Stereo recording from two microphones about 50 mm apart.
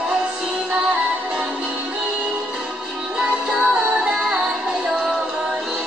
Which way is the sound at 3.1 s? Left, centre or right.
Centre.